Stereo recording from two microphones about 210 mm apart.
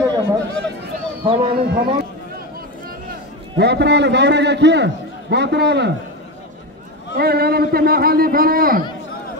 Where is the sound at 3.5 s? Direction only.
55° right (ahead or behind).